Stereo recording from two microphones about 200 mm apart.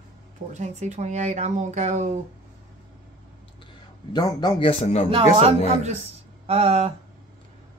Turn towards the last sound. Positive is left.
turn(degrees=-30)  # may be behind; listen again after turning